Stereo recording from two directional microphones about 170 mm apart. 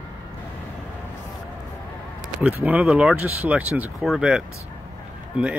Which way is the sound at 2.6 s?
10° right (ahead or behind).